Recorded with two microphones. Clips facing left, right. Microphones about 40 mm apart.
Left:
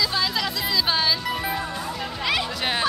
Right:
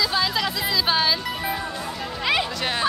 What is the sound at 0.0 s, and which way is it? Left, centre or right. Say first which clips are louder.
Music: right 1 dB; centre.